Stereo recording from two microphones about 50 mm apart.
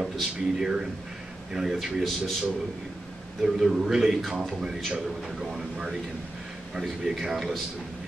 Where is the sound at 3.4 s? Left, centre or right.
Centre.